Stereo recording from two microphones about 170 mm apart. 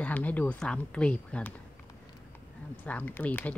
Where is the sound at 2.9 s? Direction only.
10° left (ahead or behind).